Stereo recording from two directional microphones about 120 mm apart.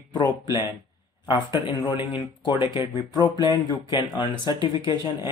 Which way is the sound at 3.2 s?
35° left (ahead or behind).